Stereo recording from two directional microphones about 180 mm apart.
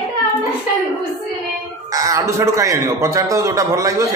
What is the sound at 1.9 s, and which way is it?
A man's voice, 20° right (ahead or behind).